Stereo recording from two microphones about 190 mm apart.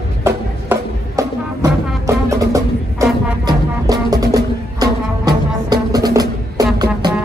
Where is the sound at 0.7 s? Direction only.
15° right (ahead or behind).